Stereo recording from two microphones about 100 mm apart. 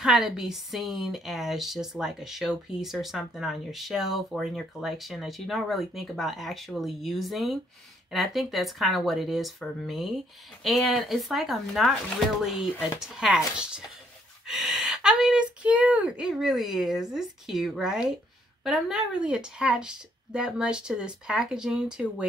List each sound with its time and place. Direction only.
0.0 s a woman's voice: 5° right (ahead or behind)
13.0 s a woman's voice: 5° right (ahead or behind)